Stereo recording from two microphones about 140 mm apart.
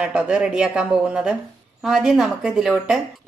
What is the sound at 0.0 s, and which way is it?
A woman's voice, 5° right (ahead or behind).